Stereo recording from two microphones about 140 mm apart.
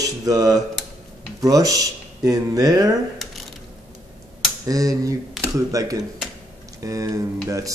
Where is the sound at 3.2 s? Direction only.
Centre (ahead or behind).